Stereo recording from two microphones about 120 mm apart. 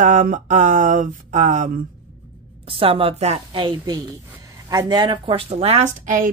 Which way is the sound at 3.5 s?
40° right (ahead or behind).